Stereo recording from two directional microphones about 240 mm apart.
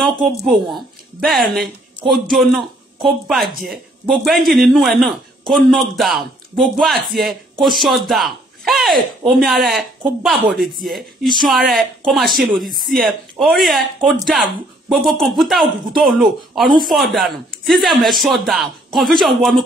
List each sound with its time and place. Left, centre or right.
0.2 s speech: centre